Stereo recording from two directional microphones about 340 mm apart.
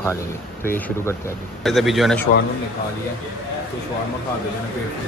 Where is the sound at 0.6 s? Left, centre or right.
Centre.